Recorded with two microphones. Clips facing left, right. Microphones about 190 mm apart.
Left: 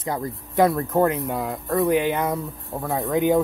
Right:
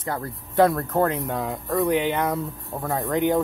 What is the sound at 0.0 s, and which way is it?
Speech, 15° left (ahead or behind).